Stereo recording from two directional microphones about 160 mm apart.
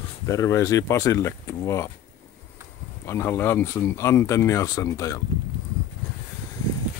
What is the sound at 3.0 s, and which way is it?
Speech, 15° left (ahead or behind).